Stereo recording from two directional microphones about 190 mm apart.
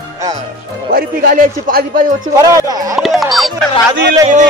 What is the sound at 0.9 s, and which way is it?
Speech, 50° right (ahead or behind).